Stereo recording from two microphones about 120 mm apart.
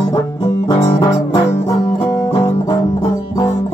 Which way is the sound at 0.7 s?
25° left (ahead or behind).